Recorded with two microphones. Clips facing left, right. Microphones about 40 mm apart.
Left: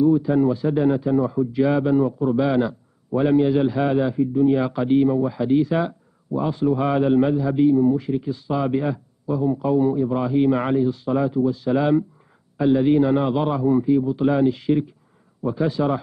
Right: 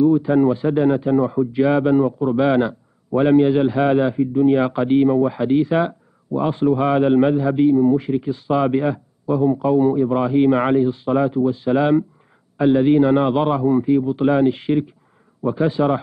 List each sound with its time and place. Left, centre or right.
0.0 s a man's voice: centre
6.8 s a man's voice: centre
14.5 s speech: right
15.4 s a man's voice: right